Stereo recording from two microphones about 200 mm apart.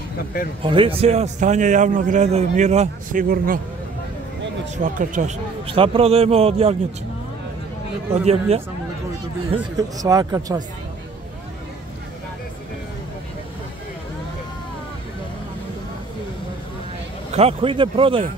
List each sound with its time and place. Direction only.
0.6 s a man's voice: 25° right (ahead or behind); by 3.6 s 45° right (ahead or behind)
4.8 s a man's voice: 40° right (ahead or behind)
8.3 s a man's voice: 30° right (ahead or behind)
9.8 s speech: 20° right (ahead or behind)
17.3 s speech: 30° right (ahead or behind)